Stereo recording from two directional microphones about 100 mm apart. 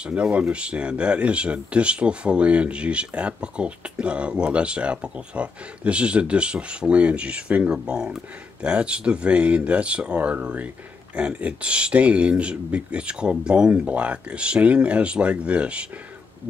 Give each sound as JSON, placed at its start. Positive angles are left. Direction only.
{"t": 0.0, "sound": "speech", "side_deg": -10}